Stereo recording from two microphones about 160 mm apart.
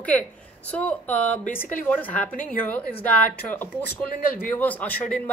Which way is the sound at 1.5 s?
55° left (ahead or behind).